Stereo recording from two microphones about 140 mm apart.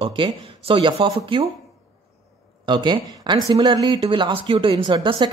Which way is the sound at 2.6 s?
35° right (ahead or behind).